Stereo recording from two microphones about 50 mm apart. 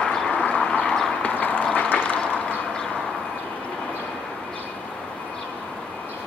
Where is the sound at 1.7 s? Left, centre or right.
Left.